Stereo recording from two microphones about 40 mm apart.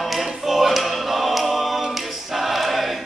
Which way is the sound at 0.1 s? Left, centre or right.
Centre.